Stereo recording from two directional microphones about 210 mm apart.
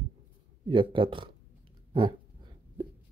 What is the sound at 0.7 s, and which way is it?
Speech, 25° right (ahead or behind).